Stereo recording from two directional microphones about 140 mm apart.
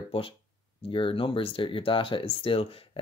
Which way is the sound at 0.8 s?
40° left (ahead or behind).